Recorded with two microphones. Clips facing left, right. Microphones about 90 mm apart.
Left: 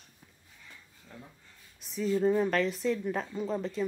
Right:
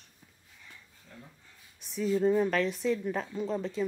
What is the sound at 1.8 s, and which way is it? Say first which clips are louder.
Speech: even; centre (ahead or behind).